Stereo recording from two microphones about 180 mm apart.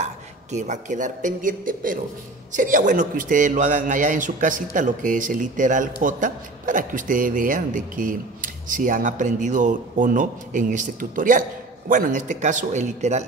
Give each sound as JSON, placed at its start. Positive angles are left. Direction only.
{"t": 0.0, "sound": "a man's voice", "side_deg": -40}